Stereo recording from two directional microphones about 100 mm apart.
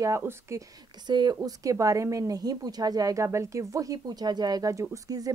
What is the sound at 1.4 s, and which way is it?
Speech, 35° right (ahead or behind).